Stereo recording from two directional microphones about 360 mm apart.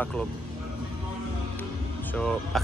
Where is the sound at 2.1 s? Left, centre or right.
Centre.